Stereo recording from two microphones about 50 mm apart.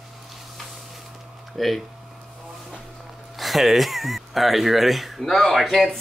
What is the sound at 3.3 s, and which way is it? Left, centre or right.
Speech, centre.